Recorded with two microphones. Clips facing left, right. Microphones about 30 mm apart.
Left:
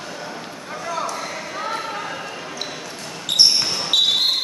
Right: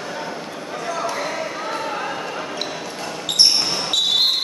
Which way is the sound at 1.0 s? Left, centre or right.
Right.